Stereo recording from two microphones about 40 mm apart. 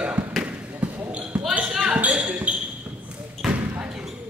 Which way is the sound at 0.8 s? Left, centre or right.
Right.